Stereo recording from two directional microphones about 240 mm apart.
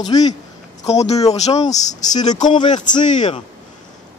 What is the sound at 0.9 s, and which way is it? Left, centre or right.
A man's voice, left.